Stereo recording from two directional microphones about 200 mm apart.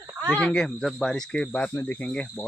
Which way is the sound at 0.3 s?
5° left (ahead or behind).